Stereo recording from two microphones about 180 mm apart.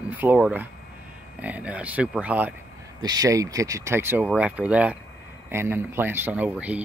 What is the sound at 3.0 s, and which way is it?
Speech, 20° right (ahead or behind).